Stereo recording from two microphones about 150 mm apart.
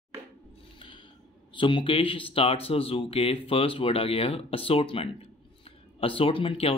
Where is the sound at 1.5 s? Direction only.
35° left (ahead or behind).